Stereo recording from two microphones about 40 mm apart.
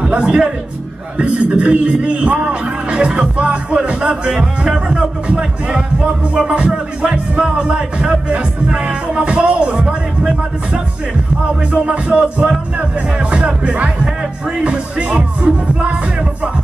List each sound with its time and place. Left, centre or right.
0.1 s a man's voice: right
5.3 s music: right
6.3 s speech: right